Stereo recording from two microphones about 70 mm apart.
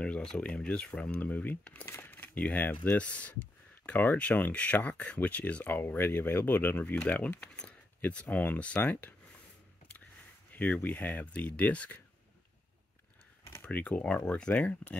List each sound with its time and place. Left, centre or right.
0.0 s speech: centre
10.5 s speech: left
13.6 s speech: left